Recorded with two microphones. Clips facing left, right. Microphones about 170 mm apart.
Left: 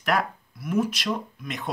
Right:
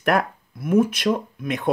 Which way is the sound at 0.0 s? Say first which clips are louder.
Right 4 dB; 50° right (ahead or behind).